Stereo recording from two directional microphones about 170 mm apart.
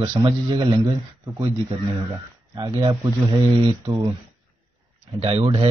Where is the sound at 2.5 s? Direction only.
25° right (ahead or behind).